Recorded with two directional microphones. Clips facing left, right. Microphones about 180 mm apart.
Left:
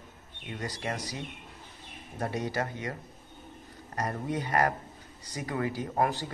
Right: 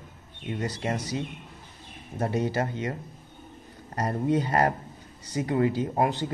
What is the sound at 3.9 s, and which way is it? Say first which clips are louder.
Speech: right 7 dB; 30° right (ahead or behind).